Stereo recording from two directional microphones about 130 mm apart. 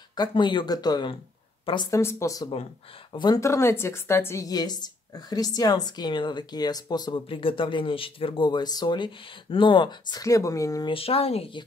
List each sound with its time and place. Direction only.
0.1 s a woman's voice: 35° left (ahead or behind)
1.9 s speech: 20° left (ahead or behind)
3.1 s speech: 35° left (ahead or behind)
3.3 s a woman's voice: 20° left (ahead or behind)
10.9 s speech: 45° left (ahead or behind)